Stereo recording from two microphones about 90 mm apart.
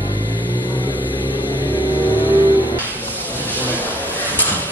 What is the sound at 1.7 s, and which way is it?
Vehicle, 20° left (ahead or behind).